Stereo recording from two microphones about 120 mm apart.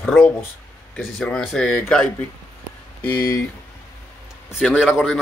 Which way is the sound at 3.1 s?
30° left (ahead or behind).